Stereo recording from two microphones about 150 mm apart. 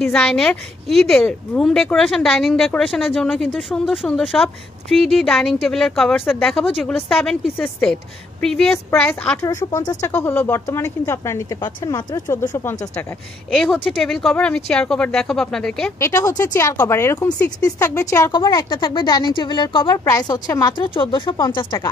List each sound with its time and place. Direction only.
0.0 s a woman's voice: 5° left (ahead or behind)
9.4 s speech: 25° left (ahead or behind)
13.5 s a woman's voice: centre (ahead or behind)
16.0 s speech: 20° left (ahead or behind)